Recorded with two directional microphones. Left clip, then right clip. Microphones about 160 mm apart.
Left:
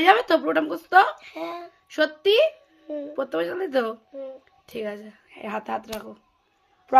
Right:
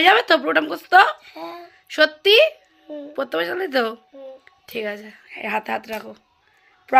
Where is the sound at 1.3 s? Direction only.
40° left (ahead or behind).